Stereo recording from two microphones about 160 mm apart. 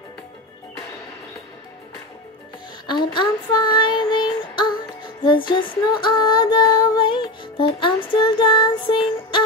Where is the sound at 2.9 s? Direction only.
30° left (ahead or behind).